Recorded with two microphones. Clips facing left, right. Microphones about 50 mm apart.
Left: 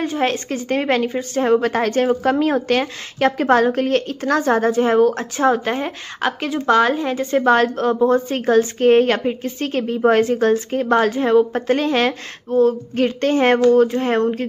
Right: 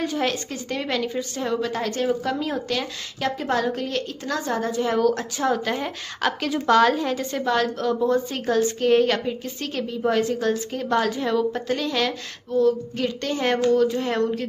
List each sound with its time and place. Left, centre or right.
0.0 s a woman's voice: left
7.4 s a woman's voice: left